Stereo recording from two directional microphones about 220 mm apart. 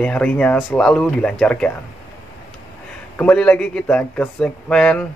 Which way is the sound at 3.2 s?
5° left (ahead or behind).